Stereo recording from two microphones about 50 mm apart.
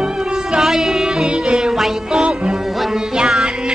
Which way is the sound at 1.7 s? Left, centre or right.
Centre.